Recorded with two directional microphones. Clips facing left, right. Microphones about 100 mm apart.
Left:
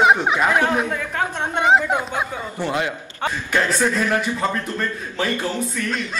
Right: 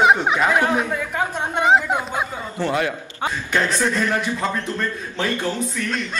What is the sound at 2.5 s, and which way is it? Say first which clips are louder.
Speech: right 2 dB; 20° left (ahead or behind).